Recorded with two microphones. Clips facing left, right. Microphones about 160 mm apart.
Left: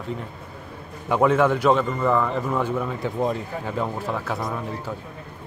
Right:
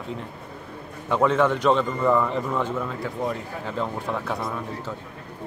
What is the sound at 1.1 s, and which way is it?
Speech, 10° left (ahead or behind).